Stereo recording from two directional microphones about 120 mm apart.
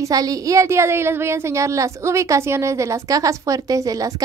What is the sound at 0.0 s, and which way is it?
A woman's voice, 30° right (ahead or behind).